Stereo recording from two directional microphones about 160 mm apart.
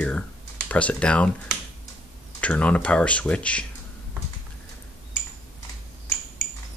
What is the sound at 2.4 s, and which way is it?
Speech, 10° left (ahead or behind).